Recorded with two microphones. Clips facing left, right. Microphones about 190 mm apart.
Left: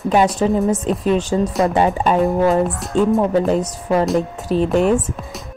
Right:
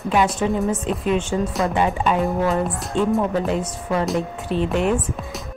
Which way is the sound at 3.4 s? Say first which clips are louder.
Left 5 dB; 35° left (ahead or behind).